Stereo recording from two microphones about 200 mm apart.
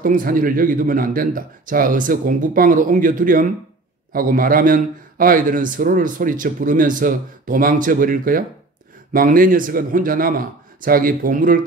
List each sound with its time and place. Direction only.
0.0 s a man's voice: 45° right (ahead or behind)